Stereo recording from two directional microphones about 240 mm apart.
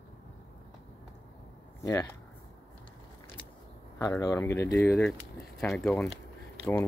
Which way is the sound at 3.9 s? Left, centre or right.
Centre.